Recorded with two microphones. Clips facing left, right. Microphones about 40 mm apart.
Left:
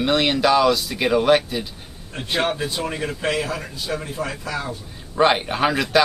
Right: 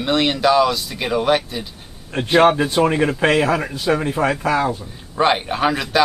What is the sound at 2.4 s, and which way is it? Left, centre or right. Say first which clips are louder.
Speech: right 10 dB; right.